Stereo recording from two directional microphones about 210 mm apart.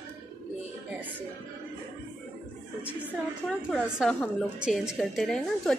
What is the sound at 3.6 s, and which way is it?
A woman's voice, 5° right (ahead or behind).